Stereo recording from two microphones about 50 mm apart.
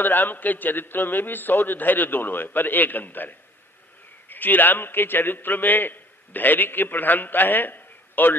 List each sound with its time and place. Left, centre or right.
0.0 s a man's voice: left